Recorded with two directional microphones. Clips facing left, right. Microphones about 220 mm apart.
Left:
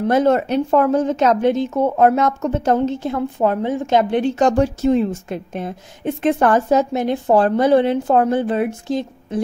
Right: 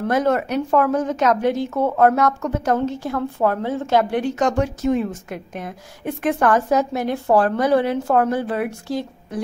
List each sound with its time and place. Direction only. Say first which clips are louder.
0.0 s speech: left 4 dB; 25° left (ahead or behind)